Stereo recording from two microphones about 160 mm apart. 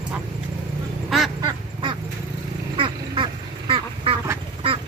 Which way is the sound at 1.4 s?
30° right (ahead or behind).